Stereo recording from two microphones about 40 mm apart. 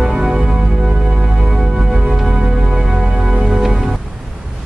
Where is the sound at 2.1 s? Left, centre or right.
Centre.